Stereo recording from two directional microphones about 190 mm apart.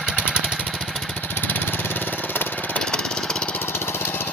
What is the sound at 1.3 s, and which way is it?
Lawn mower, 10° left (ahead or behind).